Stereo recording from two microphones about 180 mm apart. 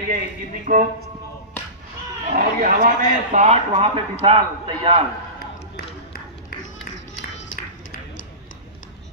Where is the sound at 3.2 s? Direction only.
40° right (ahead or behind).